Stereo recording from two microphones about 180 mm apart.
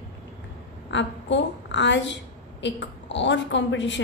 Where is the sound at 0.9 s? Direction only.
85° left.